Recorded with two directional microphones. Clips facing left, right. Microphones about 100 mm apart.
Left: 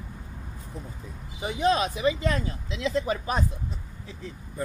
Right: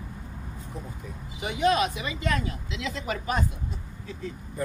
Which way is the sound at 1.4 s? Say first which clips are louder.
Even; 30° left (ahead or behind).